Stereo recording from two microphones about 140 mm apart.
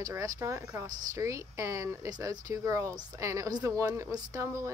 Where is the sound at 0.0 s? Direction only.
20° right (ahead or behind).